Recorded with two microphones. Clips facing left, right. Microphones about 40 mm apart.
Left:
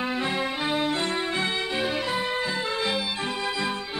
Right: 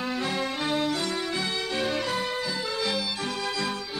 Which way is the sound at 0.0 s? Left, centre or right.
Left.